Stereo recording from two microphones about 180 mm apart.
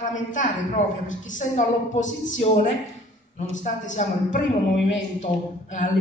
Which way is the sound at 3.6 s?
45° left (ahead or behind).